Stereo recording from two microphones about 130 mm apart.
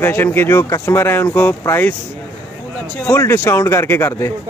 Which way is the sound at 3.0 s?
20° left (ahead or behind).